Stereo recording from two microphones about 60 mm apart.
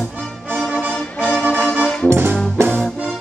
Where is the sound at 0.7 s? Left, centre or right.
Centre.